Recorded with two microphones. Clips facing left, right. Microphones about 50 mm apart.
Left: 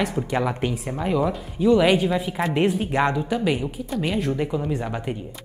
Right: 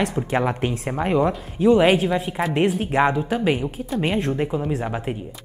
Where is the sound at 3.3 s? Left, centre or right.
Right.